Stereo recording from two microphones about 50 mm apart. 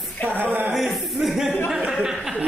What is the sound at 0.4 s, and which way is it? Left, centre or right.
Speech, right.